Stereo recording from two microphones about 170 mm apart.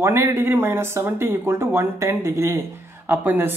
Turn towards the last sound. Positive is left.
turn(degrees=-10)  # may be behind; listen again after turning